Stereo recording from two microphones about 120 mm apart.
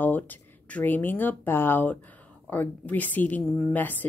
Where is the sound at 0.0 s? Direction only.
15° left (ahead or behind).